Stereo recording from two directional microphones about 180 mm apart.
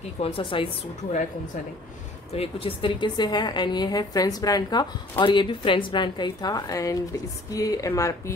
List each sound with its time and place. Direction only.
0.2 s a woman's voice: 30° left (ahead or behind)
2.3 s a woman's voice: 30° left (ahead or behind)